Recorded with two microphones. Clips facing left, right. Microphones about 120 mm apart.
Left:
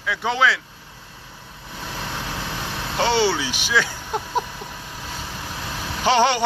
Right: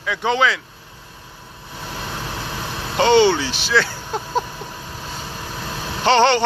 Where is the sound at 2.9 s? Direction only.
5° left (ahead or behind).